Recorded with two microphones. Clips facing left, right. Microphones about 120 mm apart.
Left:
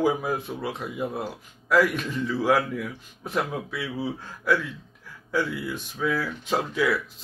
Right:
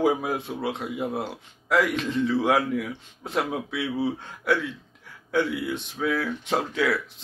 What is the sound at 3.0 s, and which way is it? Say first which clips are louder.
Speech: even; 25° right (ahead or behind).